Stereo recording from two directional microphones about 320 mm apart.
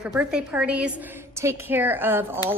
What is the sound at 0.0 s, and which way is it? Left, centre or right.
A woman's voice, centre.